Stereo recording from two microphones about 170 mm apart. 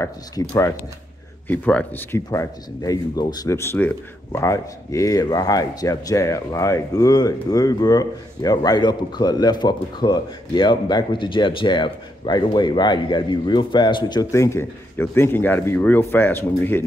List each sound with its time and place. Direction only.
0.0 s speech: 20° left (ahead or behind)